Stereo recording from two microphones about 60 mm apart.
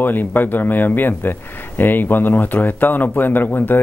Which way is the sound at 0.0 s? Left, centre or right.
Left.